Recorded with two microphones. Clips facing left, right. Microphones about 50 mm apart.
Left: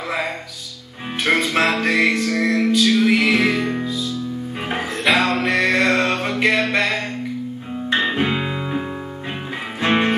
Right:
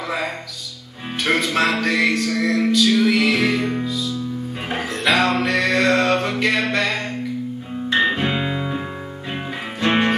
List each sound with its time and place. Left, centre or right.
1.1 s music: centre
8.0 s music: centre